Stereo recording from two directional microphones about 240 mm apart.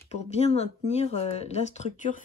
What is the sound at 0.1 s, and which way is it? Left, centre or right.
Speech, left.